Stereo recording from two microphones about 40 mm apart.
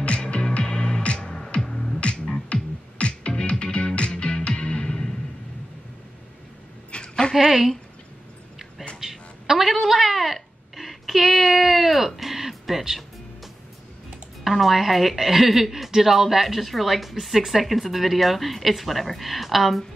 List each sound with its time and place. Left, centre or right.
0.0 s music: left
2.0 s music: left
6.9 s a sound: left
7.3 s a woman's voice: centre
9.0 s a sound: centre
12.2 s music: centre
14.4 s a woman's voice: centre